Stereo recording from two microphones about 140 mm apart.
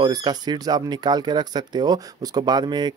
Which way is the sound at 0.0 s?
30° right (ahead or behind).